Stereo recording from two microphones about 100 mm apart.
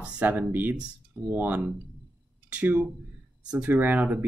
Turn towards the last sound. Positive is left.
turn(degrees=-15)  # may be behind; listen again after turning